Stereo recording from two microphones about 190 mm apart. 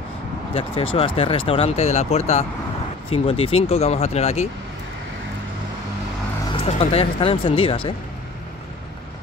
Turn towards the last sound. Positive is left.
turn(degrees=30)  # may be behind; listen again after turning